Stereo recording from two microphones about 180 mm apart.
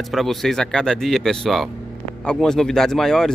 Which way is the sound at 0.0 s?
Centre (ahead or behind).